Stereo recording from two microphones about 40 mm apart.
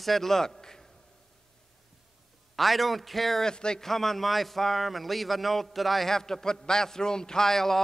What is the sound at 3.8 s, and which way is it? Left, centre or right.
A man's voice, centre.